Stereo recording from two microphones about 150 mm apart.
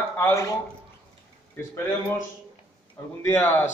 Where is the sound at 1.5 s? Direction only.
15° left (ahead or behind).